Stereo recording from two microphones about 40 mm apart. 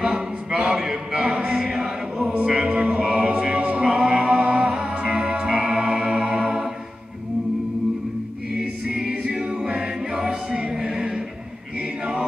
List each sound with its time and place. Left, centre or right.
0.7 s a sound: centre
1.2 s music: right
1.5 s choir: centre
2.1 s music: right
9.1 s music: right
12.0 s choir: right